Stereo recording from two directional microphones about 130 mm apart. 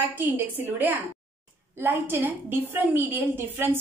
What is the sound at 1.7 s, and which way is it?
A woman's voice, 15° right (ahead or behind).